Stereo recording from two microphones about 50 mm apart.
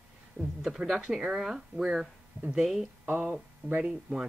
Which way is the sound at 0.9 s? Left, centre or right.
Centre.